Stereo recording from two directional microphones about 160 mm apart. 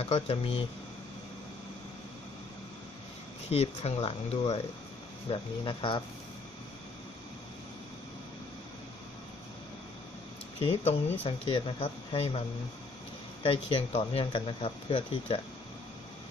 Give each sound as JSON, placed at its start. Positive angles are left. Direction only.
{"t": 0.0, "sound": "speech", "side_deg": 35}
{"t": 3.4, "sound": "speech", "side_deg": 40}
{"t": 10.6, "sound": "speech", "side_deg": 35}